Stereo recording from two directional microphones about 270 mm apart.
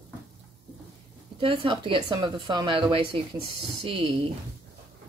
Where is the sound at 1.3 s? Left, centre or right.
Centre.